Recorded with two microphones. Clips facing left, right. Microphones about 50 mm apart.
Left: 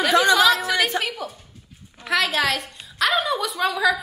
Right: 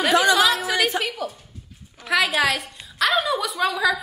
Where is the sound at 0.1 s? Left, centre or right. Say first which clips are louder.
Left 1 dB; right.